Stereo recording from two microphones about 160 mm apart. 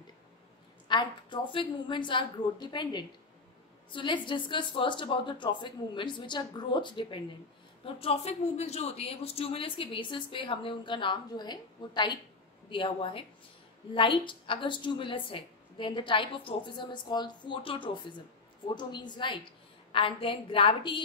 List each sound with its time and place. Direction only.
0.8 s a woman's voice: 30° left (ahead or behind)